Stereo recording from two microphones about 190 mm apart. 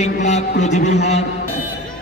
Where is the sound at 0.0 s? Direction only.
40° left (ahead or behind).